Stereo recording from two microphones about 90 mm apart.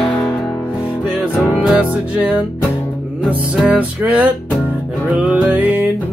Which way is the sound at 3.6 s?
15° right (ahead or behind).